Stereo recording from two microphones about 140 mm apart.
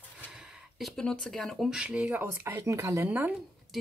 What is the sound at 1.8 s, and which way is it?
Speech, 10° right (ahead or behind).